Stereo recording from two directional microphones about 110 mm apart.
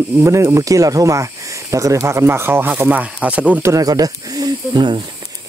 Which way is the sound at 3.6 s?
30° right (ahead or behind).